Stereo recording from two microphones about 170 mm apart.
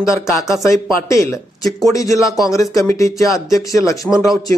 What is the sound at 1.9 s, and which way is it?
Speech, 20° left (ahead or behind).